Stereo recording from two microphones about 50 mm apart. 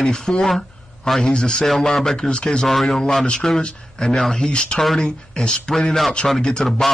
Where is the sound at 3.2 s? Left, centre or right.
Centre.